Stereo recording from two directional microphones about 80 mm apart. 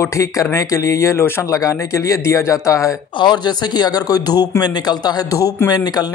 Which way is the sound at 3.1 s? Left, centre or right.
Left.